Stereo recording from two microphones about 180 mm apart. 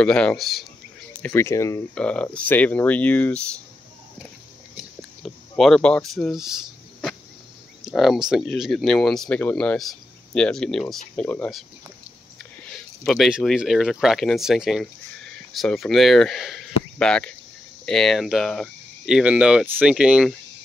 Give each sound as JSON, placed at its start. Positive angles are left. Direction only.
{"t": 0.0, "sound": "speech", "side_deg": 5}
{"t": 1.2, "sound": "speech", "side_deg": 15}
{"t": 2.0, "sound": "speech", "side_deg": 5}
{"t": 5.2, "sound": "speech", "side_deg": 5}
{"t": 12.6, "sound": "speech", "side_deg": 5}